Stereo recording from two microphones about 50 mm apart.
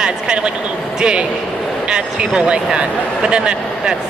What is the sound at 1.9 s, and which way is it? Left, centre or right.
A man's voice, centre.